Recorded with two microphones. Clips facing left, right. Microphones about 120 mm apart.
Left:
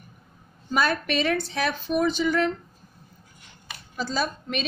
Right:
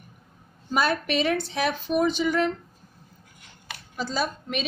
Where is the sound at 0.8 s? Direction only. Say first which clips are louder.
Right 2 dB; 15° right (ahead or behind).